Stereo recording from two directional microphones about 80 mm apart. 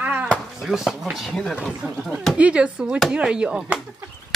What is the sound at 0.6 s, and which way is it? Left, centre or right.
Speech, centre.